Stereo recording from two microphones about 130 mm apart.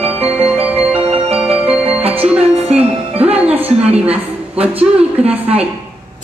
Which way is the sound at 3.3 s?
10° right (ahead or behind).